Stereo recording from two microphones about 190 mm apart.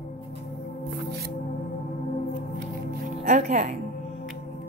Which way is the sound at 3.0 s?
35° right (ahead or behind).